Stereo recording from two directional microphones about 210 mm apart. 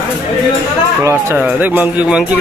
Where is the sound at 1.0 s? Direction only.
10° right (ahead or behind).